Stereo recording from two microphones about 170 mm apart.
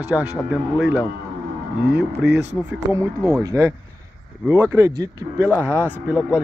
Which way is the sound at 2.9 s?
15° right (ahead or behind).